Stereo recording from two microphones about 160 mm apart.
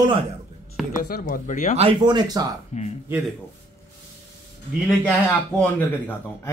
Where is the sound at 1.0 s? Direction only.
65° left (ahead or behind).